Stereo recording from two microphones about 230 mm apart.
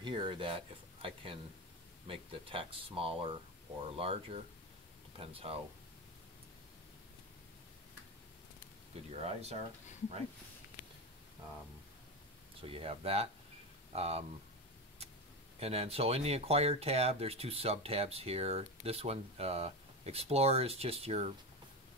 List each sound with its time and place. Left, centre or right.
0.0 s speech: right
9.1 s speech: right
12.5 s speech: right
15.6 s speech: right